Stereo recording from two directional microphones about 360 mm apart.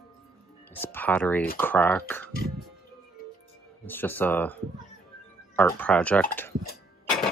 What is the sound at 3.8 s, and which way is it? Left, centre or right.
Speech, centre.